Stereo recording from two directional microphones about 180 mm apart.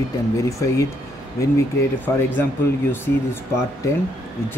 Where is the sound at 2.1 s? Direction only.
15° left (ahead or behind).